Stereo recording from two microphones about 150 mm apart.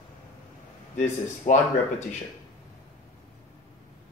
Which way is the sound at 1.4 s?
50° left (ahead or behind).